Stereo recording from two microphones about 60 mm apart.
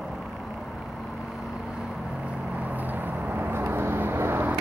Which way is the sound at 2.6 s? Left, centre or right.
Right.